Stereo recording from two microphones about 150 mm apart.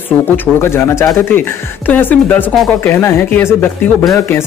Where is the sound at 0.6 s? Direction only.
15° left (ahead or behind).